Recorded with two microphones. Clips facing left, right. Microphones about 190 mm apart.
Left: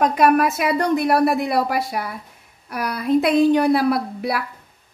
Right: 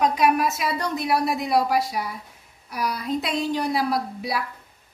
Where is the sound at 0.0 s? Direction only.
55° left (ahead or behind).